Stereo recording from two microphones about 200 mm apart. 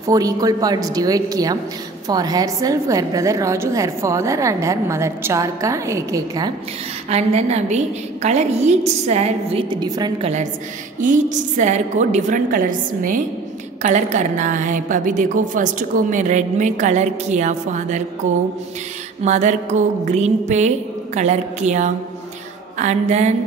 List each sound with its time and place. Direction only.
0.0 s a woman's voice: 15° right (ahead or behind)
7.1 s a woman's voice: 35° right (ahead or behind)
11.0 s a woman's voice: 40° right (ahead or behind)